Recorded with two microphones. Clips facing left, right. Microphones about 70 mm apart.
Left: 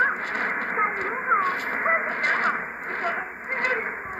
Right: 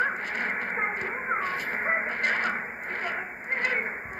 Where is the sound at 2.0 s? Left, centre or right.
Left.